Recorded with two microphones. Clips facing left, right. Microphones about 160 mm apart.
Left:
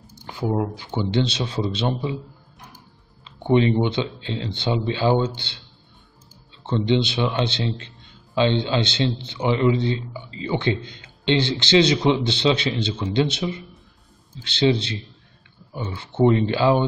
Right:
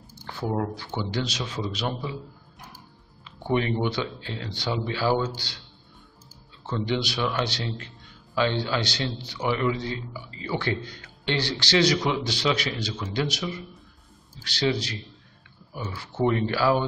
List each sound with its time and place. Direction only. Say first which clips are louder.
0.1 s a man's voice: left 4 dB; 15° left (ahead or behind)
3.3 s a man's voice: left 7 dB; 20° left (ahead or behind)
6.6 s a man's voice: left 7 dB; 25° left (ahead or behind)